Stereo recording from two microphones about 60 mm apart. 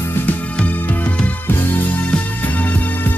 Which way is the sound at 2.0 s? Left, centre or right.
Left.